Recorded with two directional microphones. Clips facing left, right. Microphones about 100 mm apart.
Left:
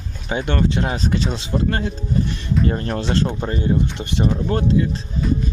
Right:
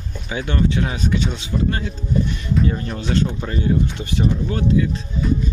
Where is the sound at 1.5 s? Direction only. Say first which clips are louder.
Left 2 dB; 45° left (ahead or behind).